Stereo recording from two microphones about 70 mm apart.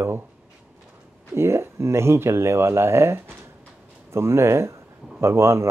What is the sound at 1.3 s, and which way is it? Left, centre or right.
Speech, right.